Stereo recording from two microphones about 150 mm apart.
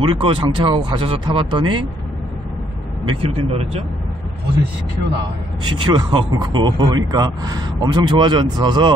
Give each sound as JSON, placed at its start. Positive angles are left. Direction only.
{"t": 0.0, "sound": "speech", "side_deg": -35}
{"t": 3.1, "sound": "speech", "side_deg": -40}
{"t": 5.6, "sound": "speech", "side_deg": -30}